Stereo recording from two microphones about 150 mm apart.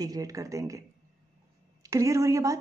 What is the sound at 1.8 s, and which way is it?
Speech, 20° right (ahead or behind).